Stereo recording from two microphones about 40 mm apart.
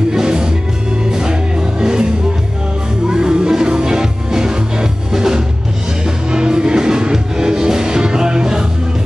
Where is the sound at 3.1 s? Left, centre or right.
Centre.